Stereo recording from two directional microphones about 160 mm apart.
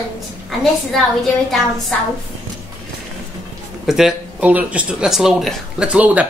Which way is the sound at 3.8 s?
5° right (ahead or behind).